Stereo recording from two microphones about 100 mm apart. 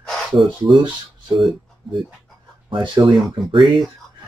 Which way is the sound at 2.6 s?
55° right (ahead or behind).